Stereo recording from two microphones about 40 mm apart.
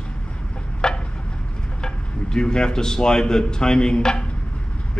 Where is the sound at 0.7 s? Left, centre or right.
Centre.